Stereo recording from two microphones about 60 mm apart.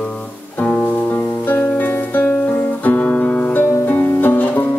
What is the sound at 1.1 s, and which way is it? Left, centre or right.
Music, left.